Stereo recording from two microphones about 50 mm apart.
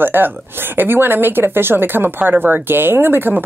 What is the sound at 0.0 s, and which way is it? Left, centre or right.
Speech, right.